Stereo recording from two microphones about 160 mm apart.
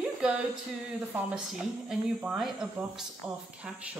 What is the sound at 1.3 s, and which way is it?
Speech, 5° right (ahead or behind).